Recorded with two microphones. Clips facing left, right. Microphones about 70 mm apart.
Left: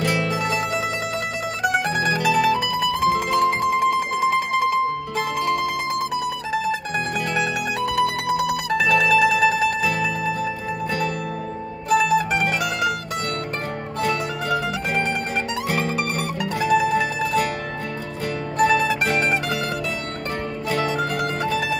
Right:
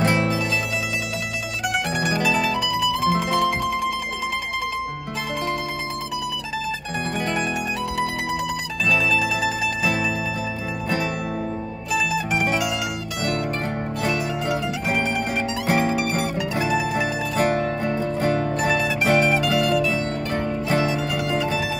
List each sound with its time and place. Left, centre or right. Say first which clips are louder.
0.0 s music: right 2 dB; right
1.6 s mandolin: left 3 dB; left
7.8 s music: left 7 dB; left
11.9 s mandolin: left 5 dB; left
15.6 s music: right 6 dB; right
16.6 s music: left 6 dB; left
18.6 s music: left 4 dB; left